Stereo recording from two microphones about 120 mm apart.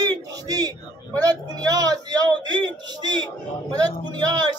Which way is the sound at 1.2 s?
35° right (ahead or behind).